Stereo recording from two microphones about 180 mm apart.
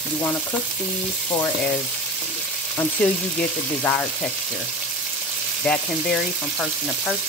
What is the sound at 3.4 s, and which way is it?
Speech, 5° left (ahead or behind).